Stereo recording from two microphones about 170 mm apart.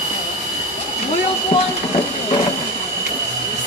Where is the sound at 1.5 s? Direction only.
35° left (ahead or behind).